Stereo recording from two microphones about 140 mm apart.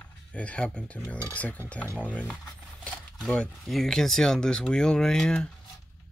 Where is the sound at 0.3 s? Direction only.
10° left (ahead or behind).